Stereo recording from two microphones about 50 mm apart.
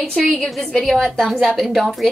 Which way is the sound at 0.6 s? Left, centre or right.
Centre.